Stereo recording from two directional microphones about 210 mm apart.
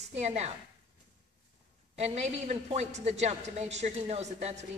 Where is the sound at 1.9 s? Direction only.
30° right (ahead or behind).